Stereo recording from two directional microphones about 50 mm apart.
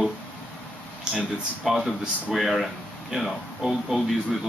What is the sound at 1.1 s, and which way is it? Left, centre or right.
Speech, centre.